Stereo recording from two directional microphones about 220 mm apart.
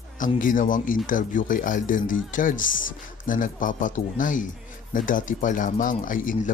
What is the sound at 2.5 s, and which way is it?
Speech, 60° left (ahead or behind).